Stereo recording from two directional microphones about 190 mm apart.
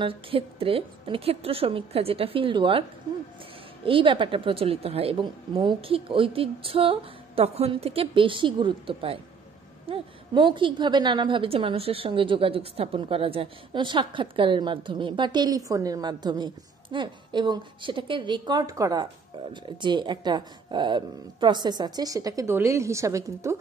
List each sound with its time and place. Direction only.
0.0 s a woman's voice: 30° right (ahead or behind)
3.8 s a woman's voice: 25° right (ahead or behind)